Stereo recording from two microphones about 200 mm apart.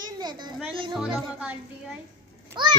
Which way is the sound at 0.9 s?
5° right (ahead or behind).